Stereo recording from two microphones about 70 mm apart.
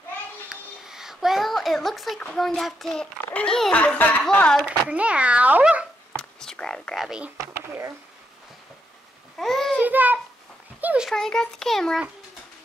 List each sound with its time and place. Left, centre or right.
0.5 s a sound: centre
2.1 s a child's voice: centre
2.4 s a child's voice: centre
3.7 s speech: left
4.6 s a child's voice: centre
6.1 s whispering: centre
7.3 s speech: right
9.4 s a child's voice: centre
9.8 s child singing: right
10.8 s a sound: right
11.1 s a child's voice: centre